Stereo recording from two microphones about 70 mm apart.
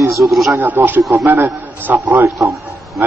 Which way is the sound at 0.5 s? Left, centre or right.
Right.